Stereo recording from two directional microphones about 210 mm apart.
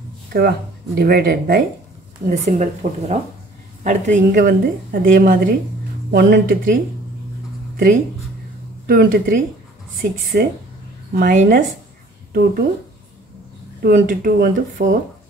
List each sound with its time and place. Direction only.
0.3 s speech: 50° right (ahead or behind)
2.2 s a woman's voice: 35° right (ahead or behind)
8.8 s speech: 45° right (ahead or behind)
13.8 s speech: 45° right (ahead or behind)